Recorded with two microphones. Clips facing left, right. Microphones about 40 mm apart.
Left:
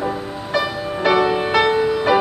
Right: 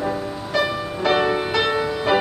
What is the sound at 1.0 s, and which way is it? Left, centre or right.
Music, left.